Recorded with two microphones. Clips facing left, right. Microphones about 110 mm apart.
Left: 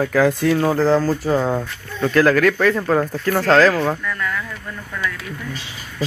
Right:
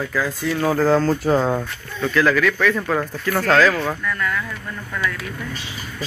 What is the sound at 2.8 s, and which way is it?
Speech, 30° left (ahead or behind).